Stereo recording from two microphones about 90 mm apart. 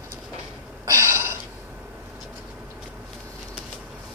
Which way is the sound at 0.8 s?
30° right (ahead or behind).